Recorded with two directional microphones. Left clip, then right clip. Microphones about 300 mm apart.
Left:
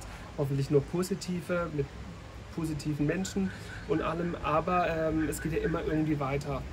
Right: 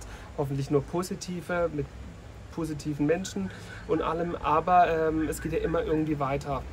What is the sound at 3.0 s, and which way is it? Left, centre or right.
Speech, centre.